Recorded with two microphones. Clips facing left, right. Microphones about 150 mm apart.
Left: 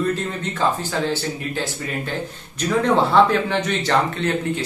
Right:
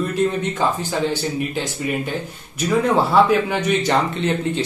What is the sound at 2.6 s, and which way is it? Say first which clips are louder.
A man's voice: right 1 dB; 10° right (ahead or behind).